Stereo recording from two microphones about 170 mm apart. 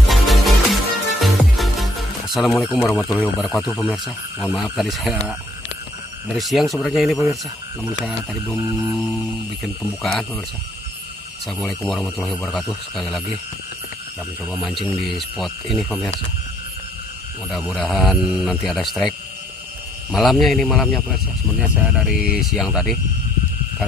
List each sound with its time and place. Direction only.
0.0 s music: centre (ahead or behind)
2.9 s a man's voice: 5° right (ahead or behind)
6.3 s a man's voice: centre (ahead or behind)
8.5 s mantra: 20° right (ahead or behind)
10.0 s a man's voice: centre (ahead or behind)
11.6 s a man's voice: 5° left (ahead or behind)
14.5 s a man's voice: centre (ahead or behind)
17.5 s a man's voice: centre (ahead or behind)